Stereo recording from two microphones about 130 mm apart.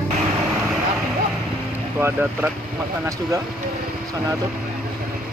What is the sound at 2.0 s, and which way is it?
Speech, 15° right (ahead or behind).